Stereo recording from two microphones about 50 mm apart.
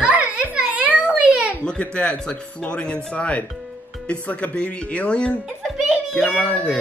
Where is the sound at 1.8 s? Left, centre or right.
Left.